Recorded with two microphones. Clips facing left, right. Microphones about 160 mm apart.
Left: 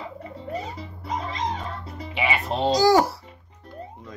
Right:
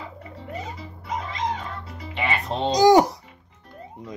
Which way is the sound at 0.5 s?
35° left (ahead or behind).